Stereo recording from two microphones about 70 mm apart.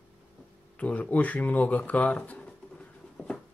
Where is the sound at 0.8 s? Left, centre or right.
Left.